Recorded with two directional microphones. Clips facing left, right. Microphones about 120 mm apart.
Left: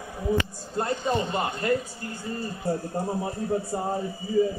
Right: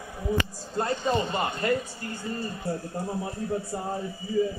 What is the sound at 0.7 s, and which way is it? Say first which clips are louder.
Speech: even; 5° left (ahead or behind).